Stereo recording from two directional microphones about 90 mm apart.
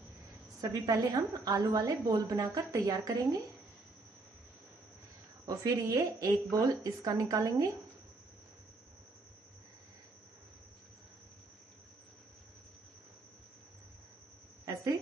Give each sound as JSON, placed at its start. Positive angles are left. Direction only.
{"t": 0.6, "sound": "a woman's voice", "side_deg": -40}
{"t": 5.6, "sound": "a woman's voice", "side_deg": -40}